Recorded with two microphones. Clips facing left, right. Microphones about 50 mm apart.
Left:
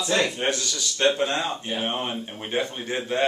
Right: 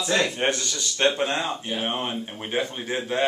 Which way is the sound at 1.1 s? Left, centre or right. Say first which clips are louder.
Even; centre.